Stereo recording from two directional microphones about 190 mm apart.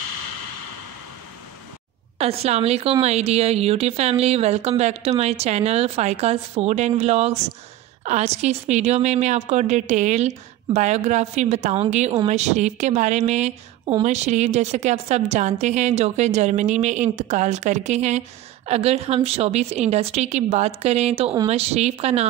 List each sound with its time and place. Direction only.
2.1 s a woman's voice: 30° right (ahead or behind)